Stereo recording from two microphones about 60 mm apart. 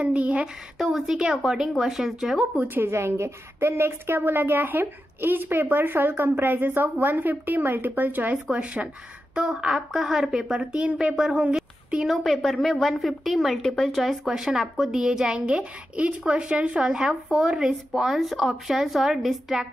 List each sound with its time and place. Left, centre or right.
0.0 s speech: right
0.7 s a woman's voice: centre
2.6 s a woman's voice: right
2.9 s a woman's voice: right
8.5 s a woman's voice: centre
12.1 s a woman's voice: centre